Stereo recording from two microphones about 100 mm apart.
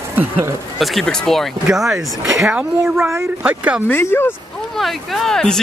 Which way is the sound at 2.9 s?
25° right (ahead or behind).